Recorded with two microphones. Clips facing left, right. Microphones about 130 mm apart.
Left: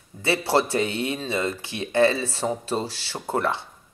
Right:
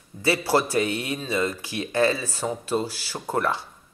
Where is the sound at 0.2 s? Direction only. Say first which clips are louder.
Even; 25° left (ahead or behind).